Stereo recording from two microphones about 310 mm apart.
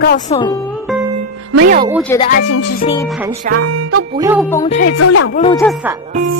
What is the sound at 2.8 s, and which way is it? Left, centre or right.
Speech, centre.